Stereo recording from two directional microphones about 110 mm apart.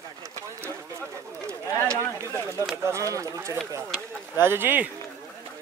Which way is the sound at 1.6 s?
25° left (ahead or behind).